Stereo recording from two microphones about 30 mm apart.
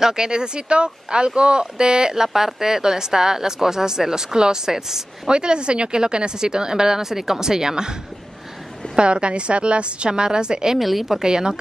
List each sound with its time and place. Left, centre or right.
0.0 s speech: right
5.3 s speech: right
8.9 s a woman's voice: right
10.8 s a woman's voice: centre
11.2 s speech: right